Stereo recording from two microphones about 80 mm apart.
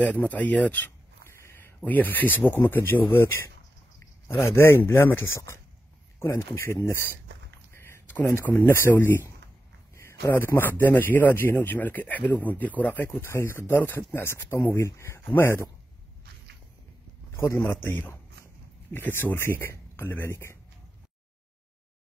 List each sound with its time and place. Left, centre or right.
0.0 s speech: centre
1.3 s a sound: left
1.8 s speech: left
7.7 s a sound: left
8.6 s a man's voice: left
17.4 s speech: left